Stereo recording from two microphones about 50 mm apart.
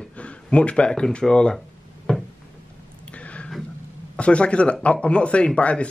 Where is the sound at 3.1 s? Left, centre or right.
Left.